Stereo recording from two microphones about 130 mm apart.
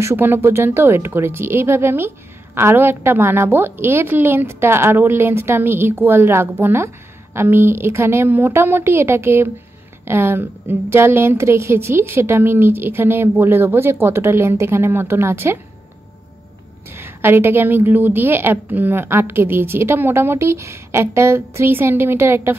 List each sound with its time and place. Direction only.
0.0 s a woman's voice: 20° right (ahead or behind)
16.9 s speech: 15° right (ahead or behind)